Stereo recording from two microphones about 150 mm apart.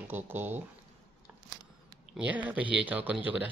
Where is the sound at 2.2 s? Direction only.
10° right (ahead or behind).